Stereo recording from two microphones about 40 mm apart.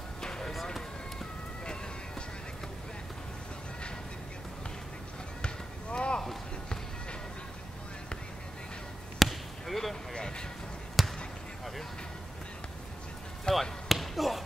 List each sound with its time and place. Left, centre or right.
0.2 s basketball bounce: centre
5.4 s basketball bounce: left
9.2 s basketball bounce: centre
10.1 s a sound: left
11.0 s basketball bounce: centre
13.5 s basketball bounce: centre